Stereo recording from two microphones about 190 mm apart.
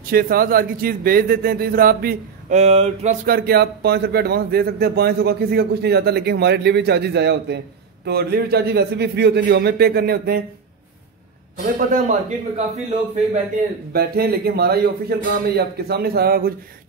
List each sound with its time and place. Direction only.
0.0 s a man's voice: 50° right (ahead or behind)
2.5 s speech: 35° right (ahead or behind)
3.3 s speech: 55° right (ahead or behind)
11.9 s speech: 40° right (ahead or behind)
13.9 s speech: 55° right (ahead or behind)